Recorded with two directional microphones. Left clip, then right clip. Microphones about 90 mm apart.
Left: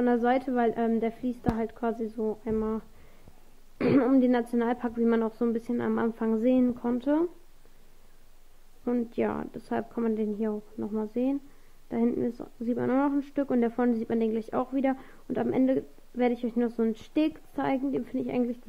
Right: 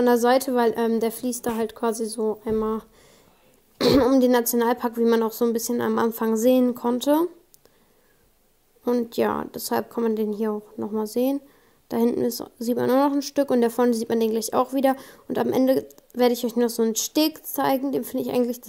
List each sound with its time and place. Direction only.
0.0 s speech: 25° right (ahead or behind)
3.7 s speech: 10° right (ahead or behind)
4.2 s speech: 25° right (ahead or behind)
9.1 s speech: 35° right (ahead or behind); by 11.1 s 15° right (ahead or behind)
12.1 s speech: 30° right (ahead or behind)